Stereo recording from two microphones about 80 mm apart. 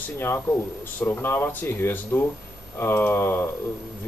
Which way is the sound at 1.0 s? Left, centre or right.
Left.